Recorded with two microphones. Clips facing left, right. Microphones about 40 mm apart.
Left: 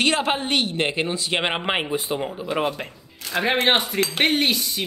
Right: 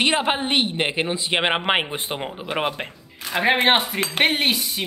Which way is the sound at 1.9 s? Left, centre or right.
Right.